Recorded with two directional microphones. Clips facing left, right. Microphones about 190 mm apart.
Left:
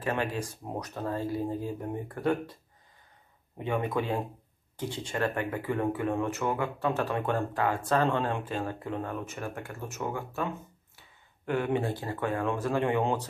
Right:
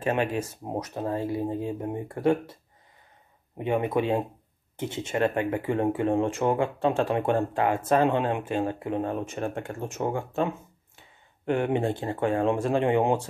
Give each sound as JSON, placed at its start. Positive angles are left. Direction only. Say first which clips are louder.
{"t": 0.0, "sound": "speech", "louder": "right 5 dB", "side_deg": -20}
{"t": 3.5, "sound": "speech", "louder": "right 4 dB", "side_deg": -20}